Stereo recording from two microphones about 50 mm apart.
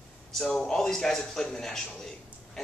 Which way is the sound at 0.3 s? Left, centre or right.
Centre.